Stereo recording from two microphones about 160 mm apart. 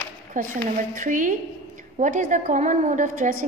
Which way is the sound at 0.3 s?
55° right (ahead or behind).